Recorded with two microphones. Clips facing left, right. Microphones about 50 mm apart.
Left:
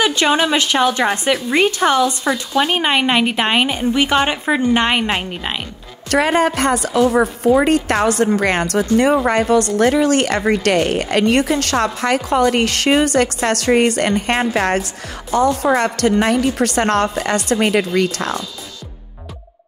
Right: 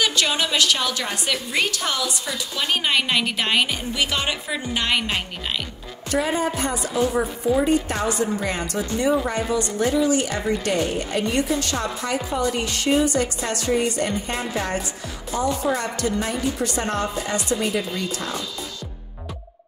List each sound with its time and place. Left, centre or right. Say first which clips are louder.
0.0 s a woman's voice: left 7 dB; left
6.0 s a woman's voice: left 7 dB; left